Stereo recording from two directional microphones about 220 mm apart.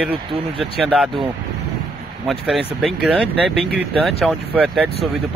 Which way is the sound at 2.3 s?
Centre (ahead or behind).